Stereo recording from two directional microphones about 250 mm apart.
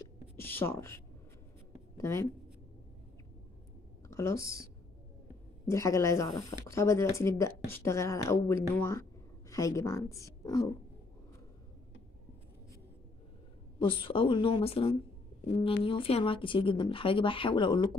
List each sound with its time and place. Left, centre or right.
0.4 s a woman's voice: centre
4.1 s speech: centre
5.7 s speech: centre
13.7 s speech: centre